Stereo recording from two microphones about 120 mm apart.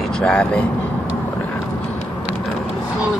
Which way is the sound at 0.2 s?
10° left (ahead or behind).